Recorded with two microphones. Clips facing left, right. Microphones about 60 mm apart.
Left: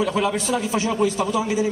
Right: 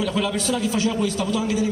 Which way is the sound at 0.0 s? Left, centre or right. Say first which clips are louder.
Left 2 dB; left.